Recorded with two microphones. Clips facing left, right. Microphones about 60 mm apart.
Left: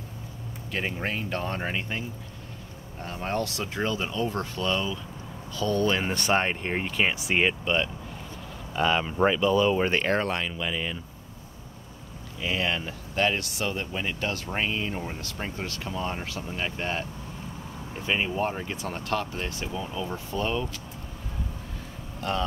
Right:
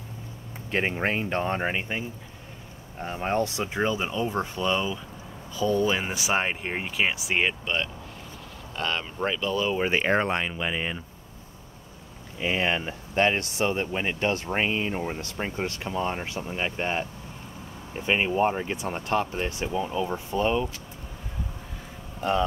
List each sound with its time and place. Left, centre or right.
0.7 s speech: right; by 9.8 s centre
9.8 s speech: centre
12.4 s speech: right
22.2 s speech: right